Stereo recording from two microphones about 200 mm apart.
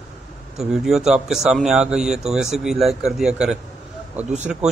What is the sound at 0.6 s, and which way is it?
Speech, centre (ahead or behind).